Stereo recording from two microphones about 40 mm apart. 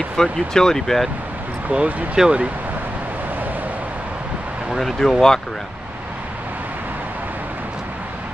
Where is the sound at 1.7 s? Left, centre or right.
Right.